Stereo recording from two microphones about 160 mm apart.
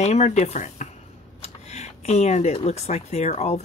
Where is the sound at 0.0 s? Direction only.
45° left (ahead or behind).